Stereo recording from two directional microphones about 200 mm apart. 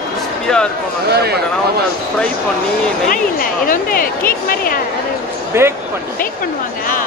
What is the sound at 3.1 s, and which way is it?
Speech, 45° left (ahead or behind).